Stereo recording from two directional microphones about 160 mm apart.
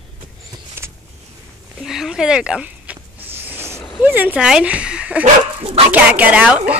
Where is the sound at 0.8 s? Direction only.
15° right (ahead or behind).